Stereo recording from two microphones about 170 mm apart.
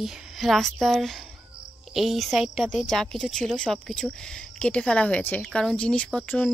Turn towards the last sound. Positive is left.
turn(degrees=5)  # may be behind; listen again after turning